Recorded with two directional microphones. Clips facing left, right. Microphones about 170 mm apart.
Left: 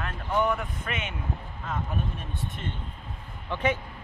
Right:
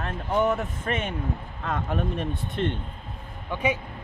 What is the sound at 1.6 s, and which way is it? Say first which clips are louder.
Speech: right 5 dB; 65° right (ahead or behind).